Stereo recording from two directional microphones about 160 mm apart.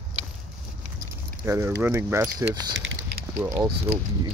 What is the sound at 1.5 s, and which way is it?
Speech, 15° right (ahead or behind).